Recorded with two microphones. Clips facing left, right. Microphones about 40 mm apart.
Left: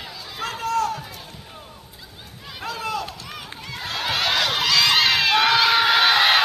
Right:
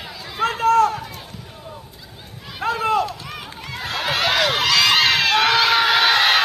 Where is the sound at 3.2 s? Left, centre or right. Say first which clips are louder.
Right 3 dB; centre.